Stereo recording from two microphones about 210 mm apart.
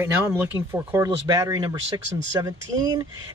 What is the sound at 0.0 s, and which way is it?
Speech, 10° right (ahead or behind).